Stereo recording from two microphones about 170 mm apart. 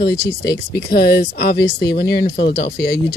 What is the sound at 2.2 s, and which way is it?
Speech, 55° left (ahead or behind).